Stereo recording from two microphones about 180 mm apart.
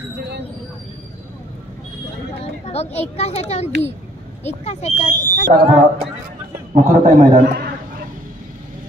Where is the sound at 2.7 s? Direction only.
35° left (ahead or behind).